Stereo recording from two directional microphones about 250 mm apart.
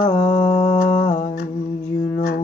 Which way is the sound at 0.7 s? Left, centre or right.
Left.